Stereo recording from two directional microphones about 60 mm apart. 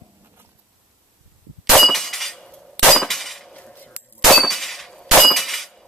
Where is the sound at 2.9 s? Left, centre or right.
Centre.